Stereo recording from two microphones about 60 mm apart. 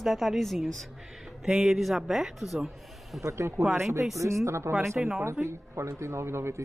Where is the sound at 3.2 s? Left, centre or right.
Right.